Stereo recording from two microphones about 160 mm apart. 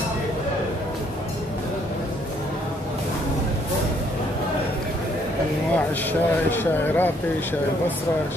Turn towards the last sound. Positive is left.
turn(degrees=10)  # may be behind; listen again after turning